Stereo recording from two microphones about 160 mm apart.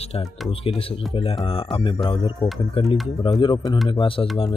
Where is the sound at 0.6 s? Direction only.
35° left (ahead or behind).